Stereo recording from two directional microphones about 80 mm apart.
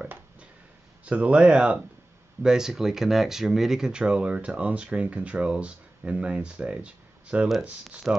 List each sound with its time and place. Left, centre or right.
1.0 s speech: centre